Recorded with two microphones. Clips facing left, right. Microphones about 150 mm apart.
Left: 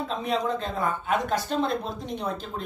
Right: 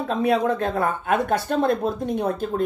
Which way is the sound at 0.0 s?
60° right (ahead or behind).